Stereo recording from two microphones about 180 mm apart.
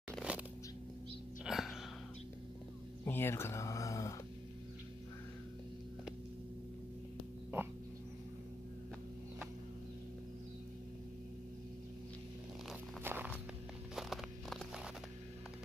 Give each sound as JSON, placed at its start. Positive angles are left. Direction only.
{"t": 0.2, "sound": "crushing", "side_deg": -5}
{"t": 1.4, "sound": "music", "side_deg": 0}
{"t": 3.1, "sound": "speech", "side_deg": 15}
{"t": 13.0, "sound": "walk", "side_deg": -10}
{"t": 13.9, "sound": "a sound", "side_deg": 0}